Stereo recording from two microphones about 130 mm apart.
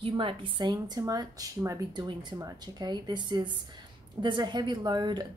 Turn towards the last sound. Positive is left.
turn(degrees=-35)  # may be behind; listen again after turning